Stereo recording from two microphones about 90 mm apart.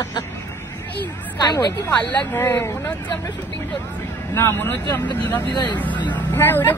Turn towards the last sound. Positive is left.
turn(degrees=20)  # may be behind; listen again after turning